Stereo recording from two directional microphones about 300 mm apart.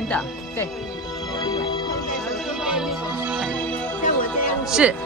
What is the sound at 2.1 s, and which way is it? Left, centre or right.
Music, centre.